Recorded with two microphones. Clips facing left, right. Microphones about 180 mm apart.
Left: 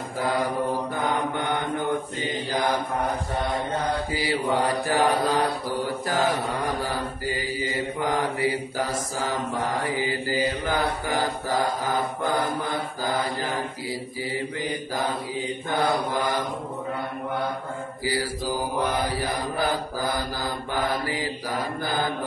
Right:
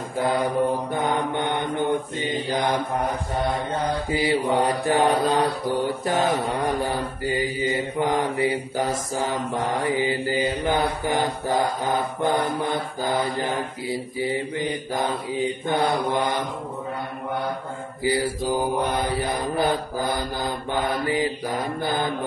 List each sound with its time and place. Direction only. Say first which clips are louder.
1.3 s mantra: right 2 dB; 20° right (ahead or behind)
4.1 s mantra: right 7 dB; 25° right (ahead or behind)
18.0 s mantra: right 5 dB; 20° right (ahead or behind)